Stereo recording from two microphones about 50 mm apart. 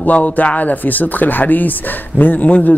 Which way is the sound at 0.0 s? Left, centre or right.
Left.